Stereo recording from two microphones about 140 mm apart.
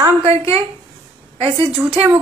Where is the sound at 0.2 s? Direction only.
45° right (ahead or behind).